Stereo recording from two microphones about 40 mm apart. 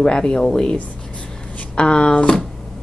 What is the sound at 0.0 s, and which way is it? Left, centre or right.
Speech, left.